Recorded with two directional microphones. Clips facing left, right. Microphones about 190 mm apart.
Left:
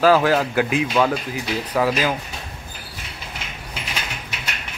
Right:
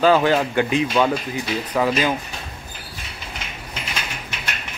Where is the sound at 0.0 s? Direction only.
Centre (ahead or behind).